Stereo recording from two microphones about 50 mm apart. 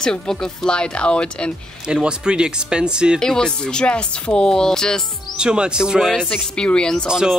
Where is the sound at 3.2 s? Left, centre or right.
Centre.